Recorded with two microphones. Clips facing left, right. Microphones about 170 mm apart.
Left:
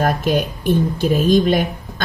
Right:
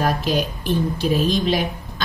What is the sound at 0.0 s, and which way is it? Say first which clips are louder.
Speech: left 3 dB; 50° left (ahead or behind).